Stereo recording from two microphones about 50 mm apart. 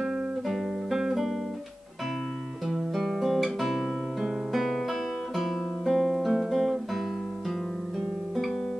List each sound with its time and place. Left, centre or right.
0.0 s guitar: centre
2.7 s music: centre
3.6 s guitar: centre